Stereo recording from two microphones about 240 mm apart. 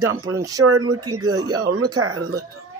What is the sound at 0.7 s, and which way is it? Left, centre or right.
Speech, right.